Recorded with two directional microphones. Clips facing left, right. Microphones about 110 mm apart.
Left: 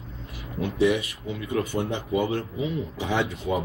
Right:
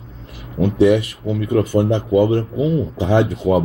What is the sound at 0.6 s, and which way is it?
Speech, 35° right (ahead or behind).